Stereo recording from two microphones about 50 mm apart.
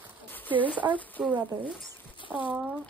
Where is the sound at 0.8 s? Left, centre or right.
Right.